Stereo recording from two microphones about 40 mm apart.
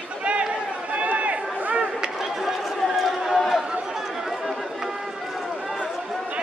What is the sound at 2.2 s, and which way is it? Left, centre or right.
Chatter, centre.